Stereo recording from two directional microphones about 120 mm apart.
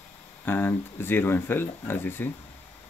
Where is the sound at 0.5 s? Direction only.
15° left (ahead or behind).